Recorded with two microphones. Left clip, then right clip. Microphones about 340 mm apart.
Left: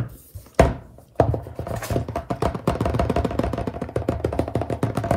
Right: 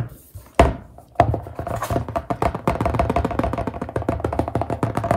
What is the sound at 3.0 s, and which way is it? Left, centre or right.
Music, centre.